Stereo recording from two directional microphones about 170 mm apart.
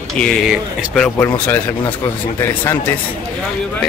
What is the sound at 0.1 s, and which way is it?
Speech, 5° left (ahead or behind).